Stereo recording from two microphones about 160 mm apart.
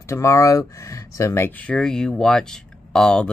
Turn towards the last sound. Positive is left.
turn(degrees=5)  # may be behind; listen again after turning